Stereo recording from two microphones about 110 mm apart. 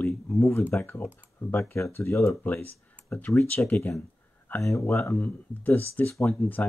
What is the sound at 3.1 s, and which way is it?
Speech, 5° left (ahead or behind).